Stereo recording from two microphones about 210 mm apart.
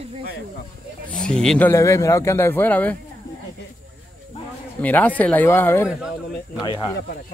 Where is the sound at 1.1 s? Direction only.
5° left (ahead or behind).